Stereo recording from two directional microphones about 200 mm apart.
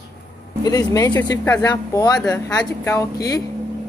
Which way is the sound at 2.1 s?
5° left (ahead or behind).